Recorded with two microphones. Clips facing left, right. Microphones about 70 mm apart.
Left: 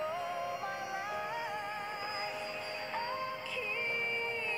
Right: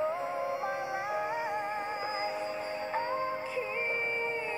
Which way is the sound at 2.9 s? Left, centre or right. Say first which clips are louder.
Right 5 dB; right.